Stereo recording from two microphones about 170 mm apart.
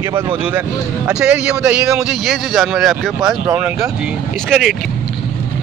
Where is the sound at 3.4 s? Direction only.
15° right (ahead or behind).